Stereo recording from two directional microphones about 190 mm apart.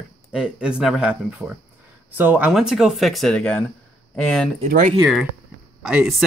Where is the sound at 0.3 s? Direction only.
5° right (ahead or behind).